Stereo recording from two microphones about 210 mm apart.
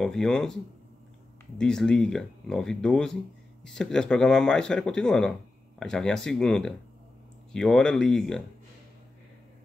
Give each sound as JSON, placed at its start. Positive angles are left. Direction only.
{"t": 0.0, "sound": "speech", "side_deg": 0}
{"t": 1.6, "sound": "speech", "side_deg": 5}